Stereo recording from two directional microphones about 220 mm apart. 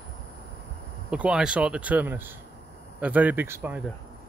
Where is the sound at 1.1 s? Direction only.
5° right (ahead or behind).